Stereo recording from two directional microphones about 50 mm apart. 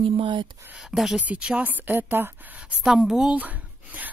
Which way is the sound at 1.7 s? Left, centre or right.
Right.